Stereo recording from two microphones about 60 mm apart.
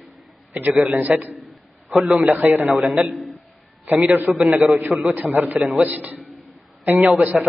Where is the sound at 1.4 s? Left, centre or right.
Centre.